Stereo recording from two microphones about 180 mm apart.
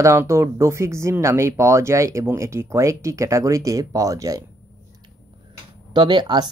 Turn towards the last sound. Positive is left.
turn(degrees=-25)  # may be behind; listen again after turning